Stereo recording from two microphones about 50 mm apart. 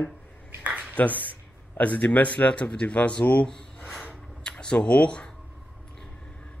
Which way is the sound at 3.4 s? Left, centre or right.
Centre.